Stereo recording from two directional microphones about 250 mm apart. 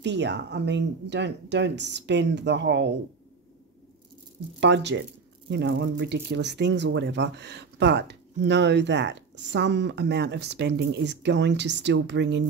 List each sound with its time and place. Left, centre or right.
0.0 s speech: right
4.6 s speech: right